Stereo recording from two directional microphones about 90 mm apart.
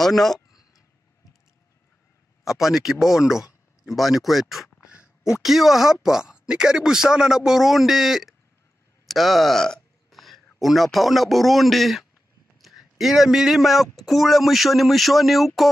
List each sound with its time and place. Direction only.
0.0 s speech: 5° left (ahead or behind)
2.4 s speech: 5° right (ahead or behind)